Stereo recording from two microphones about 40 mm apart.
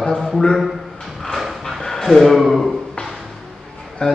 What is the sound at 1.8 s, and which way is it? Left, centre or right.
Speech, centre.